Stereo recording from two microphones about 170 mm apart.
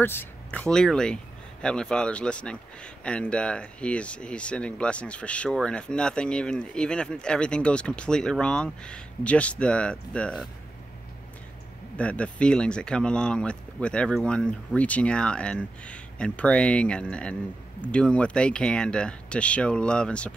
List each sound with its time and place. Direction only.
0.0 s speech: 10° left (ahead or behind)
12.0 s speech: 5° left (ahead or behind)